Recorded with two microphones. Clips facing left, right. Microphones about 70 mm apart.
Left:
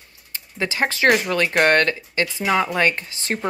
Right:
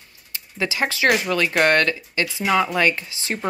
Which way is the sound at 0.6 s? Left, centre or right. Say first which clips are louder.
Left 1 dB; left.